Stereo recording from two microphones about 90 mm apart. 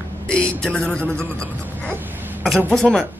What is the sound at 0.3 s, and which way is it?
Speech, 10° left (ahead or behind).